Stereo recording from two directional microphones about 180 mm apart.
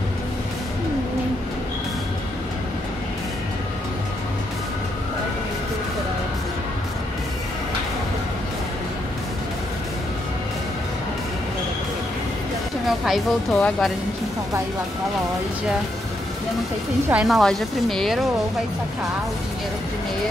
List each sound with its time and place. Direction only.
12.8 s speech: centre (ahead or behind)
17.1 s speech: centre (ahead or behind)